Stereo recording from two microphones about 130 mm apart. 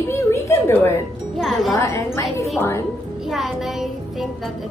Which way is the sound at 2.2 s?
Centre (ahead or behind).